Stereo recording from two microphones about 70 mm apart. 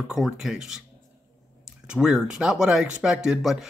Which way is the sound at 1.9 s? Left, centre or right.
Centre.